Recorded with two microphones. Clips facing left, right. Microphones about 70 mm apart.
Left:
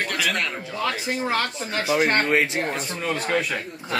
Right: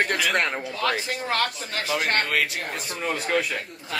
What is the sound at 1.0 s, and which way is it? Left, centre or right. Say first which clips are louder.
Speech: left 3 dB; centre.